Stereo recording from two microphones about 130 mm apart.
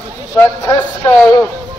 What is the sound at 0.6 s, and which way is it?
Speech, 30° left (ahead or behind).